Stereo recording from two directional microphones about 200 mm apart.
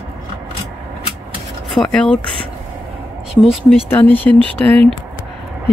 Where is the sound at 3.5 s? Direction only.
5° right (ahead or behind).